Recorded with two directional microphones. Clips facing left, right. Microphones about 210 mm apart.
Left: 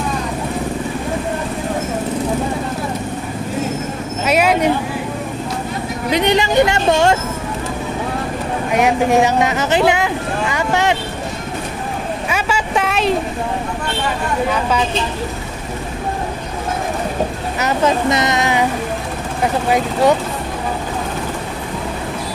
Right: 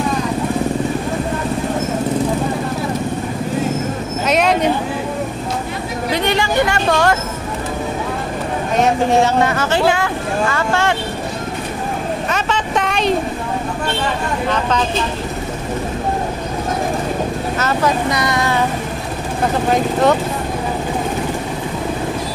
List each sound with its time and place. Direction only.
4.3 s vehicle: 5° left (ahead or behind)
6.1 s speech: 20° left (ahead or behind)
8.7 s speech: 15° left (ahead or behind)
12.3 s speech: 10° left (ahead or behind)
14.5 s speech: 10° left (ahead or behind)
17.6 s speech: 20° left (ahead or behind)
19.7 s speech: 10° left (ahead or behind)